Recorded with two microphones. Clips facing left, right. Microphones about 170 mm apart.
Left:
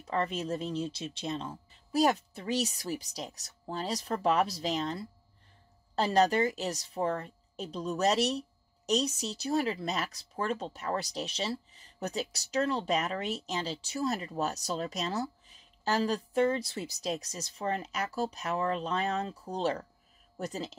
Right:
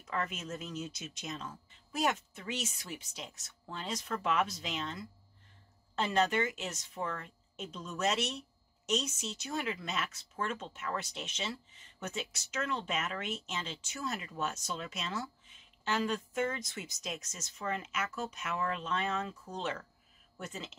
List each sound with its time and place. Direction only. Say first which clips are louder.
0.0 s a woman's voice: left 6 dB; 35° left (ahead or behind)